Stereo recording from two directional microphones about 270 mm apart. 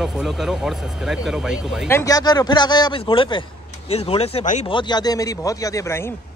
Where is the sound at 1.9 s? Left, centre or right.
Centre.